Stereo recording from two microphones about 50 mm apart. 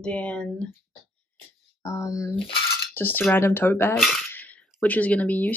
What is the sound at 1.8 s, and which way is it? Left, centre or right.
Speech, left.